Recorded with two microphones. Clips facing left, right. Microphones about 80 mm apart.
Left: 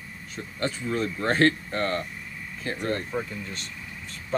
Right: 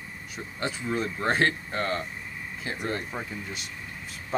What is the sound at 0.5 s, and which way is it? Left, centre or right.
Speech, centre.